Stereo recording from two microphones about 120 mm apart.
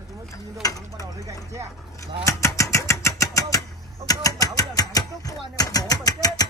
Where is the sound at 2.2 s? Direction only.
25° left (ahead or behind).